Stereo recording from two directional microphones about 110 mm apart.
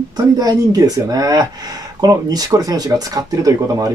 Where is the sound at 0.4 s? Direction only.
35° right (ahead or behind).